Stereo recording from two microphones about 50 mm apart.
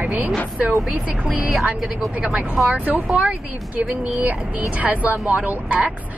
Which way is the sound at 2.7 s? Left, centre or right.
Right.